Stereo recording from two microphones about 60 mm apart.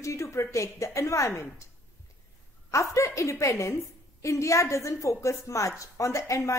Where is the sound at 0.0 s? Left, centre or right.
Left.